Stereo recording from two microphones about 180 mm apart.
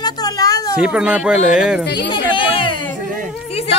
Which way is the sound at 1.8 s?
75° left (ahead or behind).